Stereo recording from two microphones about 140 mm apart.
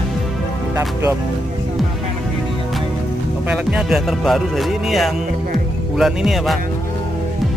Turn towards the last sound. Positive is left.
turn(degrees=0)  # may be behind; listen again after turning